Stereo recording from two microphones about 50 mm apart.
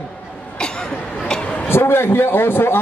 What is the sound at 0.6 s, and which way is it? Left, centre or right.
Chatter, centre.